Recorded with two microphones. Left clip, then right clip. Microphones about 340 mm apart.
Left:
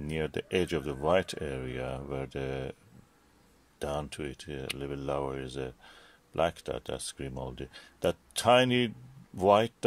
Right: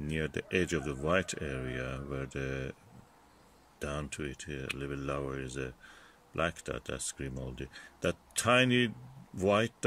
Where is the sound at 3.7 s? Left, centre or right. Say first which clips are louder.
Left 4 dB; centre.